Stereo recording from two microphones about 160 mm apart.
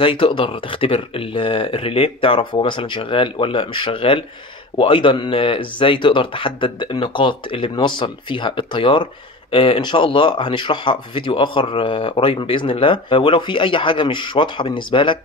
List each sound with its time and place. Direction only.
0.0 s speech: 35° left (ahead or behind)